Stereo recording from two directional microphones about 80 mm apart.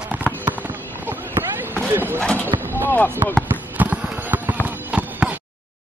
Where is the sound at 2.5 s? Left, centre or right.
Right.